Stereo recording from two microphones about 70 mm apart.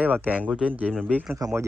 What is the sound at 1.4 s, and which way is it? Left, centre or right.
Speech, right.